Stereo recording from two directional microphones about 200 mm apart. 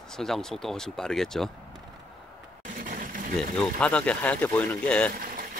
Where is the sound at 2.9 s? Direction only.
45° right (ahead or behind).